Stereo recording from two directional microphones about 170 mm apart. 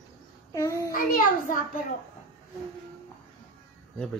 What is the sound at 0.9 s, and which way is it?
Child singing, 55° left (ahead or behind).